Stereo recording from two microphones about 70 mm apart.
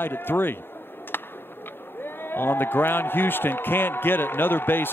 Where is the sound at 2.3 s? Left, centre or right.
Left.